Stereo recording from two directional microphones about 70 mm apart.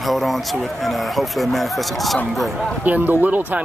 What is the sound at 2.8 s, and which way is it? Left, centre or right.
Speech, right.